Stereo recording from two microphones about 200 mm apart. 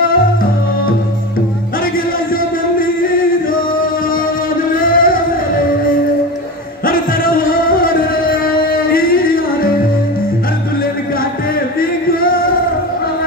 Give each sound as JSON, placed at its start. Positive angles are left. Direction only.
{"t": 3.0, "sound": "music", "side_deg": 45}
{"t": 4.7, "sound": "music", "side_deg": 45}
{"t": 6.9, "sound": "music", "side_deg": 45}
{"t": 12.2, "sound": "music", "side_deg": 45}